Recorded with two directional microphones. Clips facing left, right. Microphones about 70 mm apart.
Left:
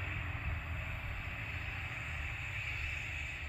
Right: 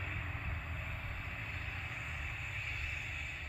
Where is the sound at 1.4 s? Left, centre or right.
Centre.